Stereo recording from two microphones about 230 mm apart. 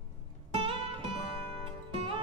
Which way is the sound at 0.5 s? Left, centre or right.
Right.